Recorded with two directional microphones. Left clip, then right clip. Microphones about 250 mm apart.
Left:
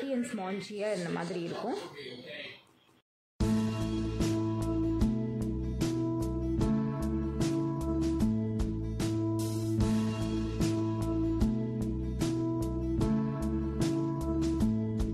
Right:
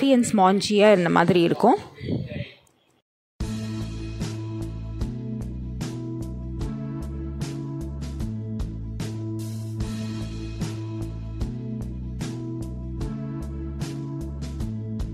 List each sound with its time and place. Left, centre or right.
0.0 s speech: right